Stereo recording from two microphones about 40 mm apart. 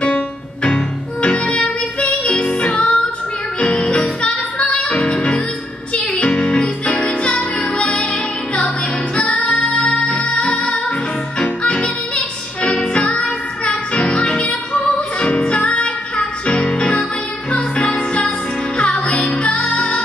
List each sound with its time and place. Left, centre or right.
0.7 s music: left
6.5 s music: left
12.9 s music: left